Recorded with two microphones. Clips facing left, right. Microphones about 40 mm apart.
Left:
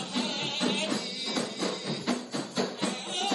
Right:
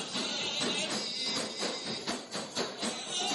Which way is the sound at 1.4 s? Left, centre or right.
Centre.